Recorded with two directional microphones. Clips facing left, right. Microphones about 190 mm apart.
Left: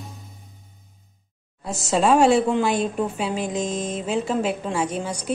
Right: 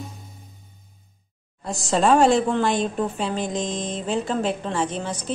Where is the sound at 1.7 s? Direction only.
5° left (ahead or behind).